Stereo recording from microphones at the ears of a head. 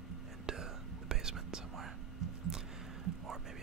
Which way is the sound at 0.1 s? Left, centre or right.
Right.